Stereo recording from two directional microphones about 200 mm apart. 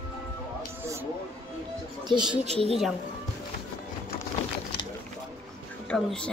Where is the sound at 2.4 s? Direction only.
30° right (ahead or behind).